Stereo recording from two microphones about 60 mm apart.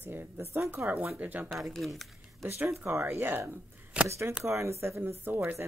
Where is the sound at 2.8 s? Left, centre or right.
Right.